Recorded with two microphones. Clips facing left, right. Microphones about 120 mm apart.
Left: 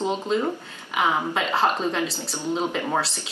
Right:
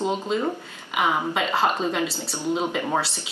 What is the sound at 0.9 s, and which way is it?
Speech, centre (ahead or behind).